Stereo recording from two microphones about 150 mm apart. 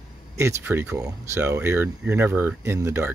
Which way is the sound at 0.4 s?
15° right (ahead or behind).